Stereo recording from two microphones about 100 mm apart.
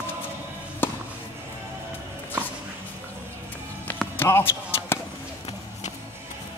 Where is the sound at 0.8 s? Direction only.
20° left (ahead or behind).